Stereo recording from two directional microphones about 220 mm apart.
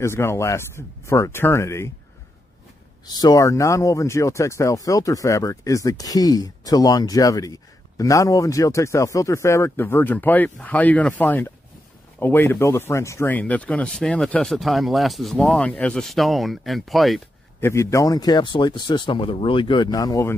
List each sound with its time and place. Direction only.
0.0 s speech: 10° left (ahead or behind)
3.1 s speech: 15° left (ahead or behind); by 17.6 s centre (ahead or behind)
17.6 s speech: 15° left (ahead or behind)